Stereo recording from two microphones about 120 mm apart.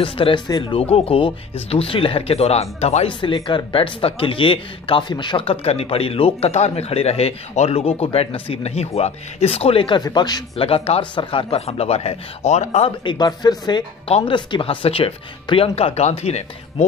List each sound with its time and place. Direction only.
0.0 s speech: 45° left (ahead or behind)
0.5 s speech: 35° left (ahead or behind)
0.9 s speech: 50° left (ahead or behind)
10.0 s speech: 35° left (ahead or behind)
10.5 s speech: 55° left (ahead or behind)
13.0 s speech: 40° left (ahead or behind)
14.0 s speech: 50° left (ahead or behind)